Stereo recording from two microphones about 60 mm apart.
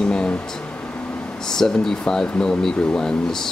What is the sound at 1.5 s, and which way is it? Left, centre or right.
Speech, centre.